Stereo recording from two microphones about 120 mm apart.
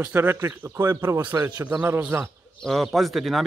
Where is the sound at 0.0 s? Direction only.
20° right (ahead or behind).